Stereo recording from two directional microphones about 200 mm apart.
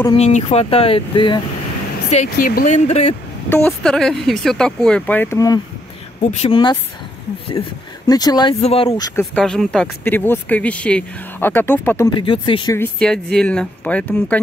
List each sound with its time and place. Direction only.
0.1 s speech: 35° left (ahead or behind)
2.0 s speech: 40° left (ahead or behind)
3.4 s speech: 10° left (ahead or behind)
6.3 s speech: 30° left (ahead or behind)
8.1 s speech: 20° left (ahead or behind)
9.3 s speech: centre (ahead or behind)
12.1 s speech: 25° left (ahead or behind)
12.7 s speech: 5° left (ahead or behind)